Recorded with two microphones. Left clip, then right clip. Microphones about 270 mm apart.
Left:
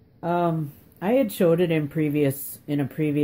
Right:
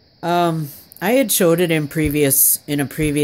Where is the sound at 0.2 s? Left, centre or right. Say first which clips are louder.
Right 6 dB; right.